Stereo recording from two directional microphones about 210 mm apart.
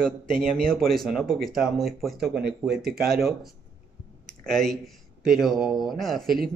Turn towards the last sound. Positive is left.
turn(degrees=0)  # may be behind; listen again after turning